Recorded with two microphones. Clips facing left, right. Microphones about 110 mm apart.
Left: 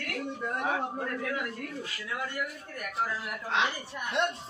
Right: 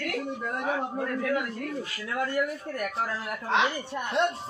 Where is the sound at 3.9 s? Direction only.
30° right (ahead or behind).